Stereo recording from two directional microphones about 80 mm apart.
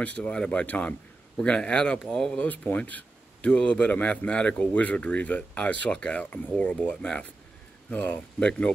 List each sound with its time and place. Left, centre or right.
0.0 s speech: centre